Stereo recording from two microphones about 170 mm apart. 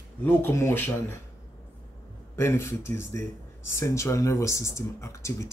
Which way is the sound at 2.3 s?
15° left (ahead or behind).